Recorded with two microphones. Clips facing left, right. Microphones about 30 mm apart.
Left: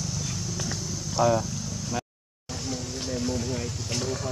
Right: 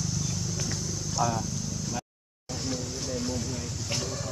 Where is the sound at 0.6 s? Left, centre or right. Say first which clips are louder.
Left 1 dB; centre.